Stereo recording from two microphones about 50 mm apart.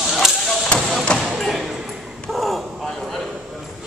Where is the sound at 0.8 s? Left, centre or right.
Centre.